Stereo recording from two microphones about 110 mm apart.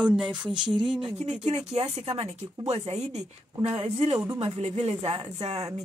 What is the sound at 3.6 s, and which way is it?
Speech, 65° right (ahead or behind).